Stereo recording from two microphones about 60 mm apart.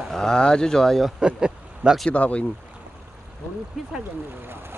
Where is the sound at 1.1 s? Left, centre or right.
Centre.